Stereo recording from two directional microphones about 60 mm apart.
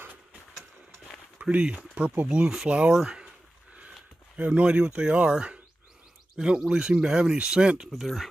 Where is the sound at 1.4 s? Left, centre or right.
Centre.